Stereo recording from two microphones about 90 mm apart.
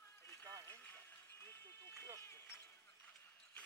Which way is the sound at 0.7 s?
20° left (ahead or behind).